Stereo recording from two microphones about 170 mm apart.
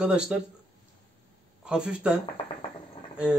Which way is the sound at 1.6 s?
5° right (ahead or behind).